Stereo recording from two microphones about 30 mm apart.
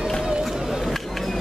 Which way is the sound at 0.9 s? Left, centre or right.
Centre.